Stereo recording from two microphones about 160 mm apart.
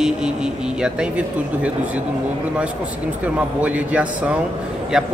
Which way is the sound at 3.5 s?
10° right (ahead or behind).